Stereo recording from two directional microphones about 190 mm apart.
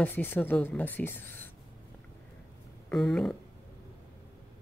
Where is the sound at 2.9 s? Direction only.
5° left (ahead or behind).